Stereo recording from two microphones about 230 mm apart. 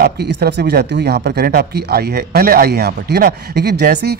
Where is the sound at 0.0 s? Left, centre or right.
Right.